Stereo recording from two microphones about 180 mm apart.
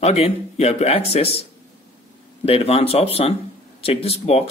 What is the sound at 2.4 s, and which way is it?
Speech, 35° left (ahead or behind).